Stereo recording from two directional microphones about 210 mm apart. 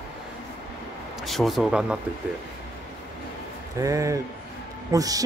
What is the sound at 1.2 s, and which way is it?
Speech, centre (ahead or behind).